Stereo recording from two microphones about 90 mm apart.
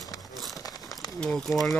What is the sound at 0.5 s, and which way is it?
Crumpling, 45° left (ahead or behind).